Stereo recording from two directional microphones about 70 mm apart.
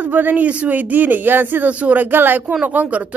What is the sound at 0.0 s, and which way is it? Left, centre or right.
Speech, right.